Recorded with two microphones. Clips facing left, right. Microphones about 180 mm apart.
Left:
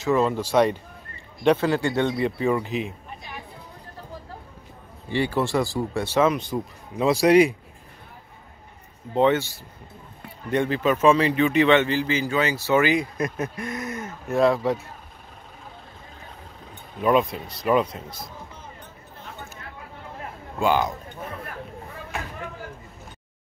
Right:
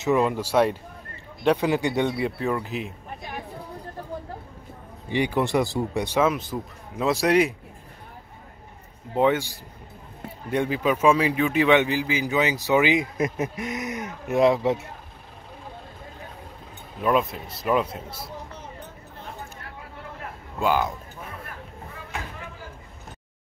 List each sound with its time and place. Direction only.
0.0 s a man's voice: 15° right (ahead or behind)
5.1 s a man's voice: 15° right (ahead or behind); by 7.5 s centre (ahead or behind)
9.1 s a man's voice: 10° right (ahead or behind)
17.0 s speech: centre (ahead or behind)
20.5 s speech: 5° right (ahead or behind)